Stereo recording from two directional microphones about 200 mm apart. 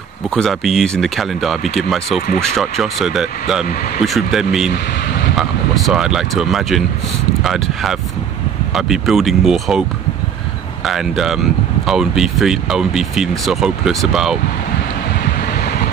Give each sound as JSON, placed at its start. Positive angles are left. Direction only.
{"t": 0.3, "sound": "speech", "side_deg": 0}
{"t": 15.4, "sound": "wind", "side_deg": 50}